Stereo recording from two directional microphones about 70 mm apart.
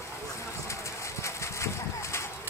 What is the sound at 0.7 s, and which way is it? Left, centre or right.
Bird, left.